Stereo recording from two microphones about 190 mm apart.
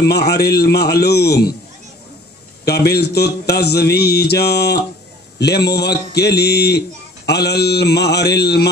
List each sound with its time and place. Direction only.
0.3 s a man's voice: 55° left (ahead or behind)
2.6 s a man's voice: 60° left (ahead or behind)